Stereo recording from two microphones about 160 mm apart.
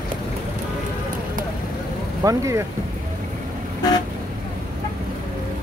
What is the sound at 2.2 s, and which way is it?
Speech, 20° right (ahead or behind).